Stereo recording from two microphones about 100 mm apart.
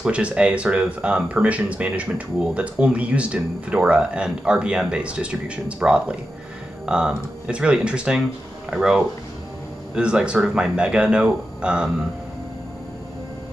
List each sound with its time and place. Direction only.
0.0 s speech: 10° right (ahead or behind)